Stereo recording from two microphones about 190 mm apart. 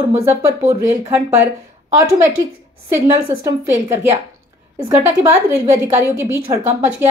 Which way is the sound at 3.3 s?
15° right (ahead or behind).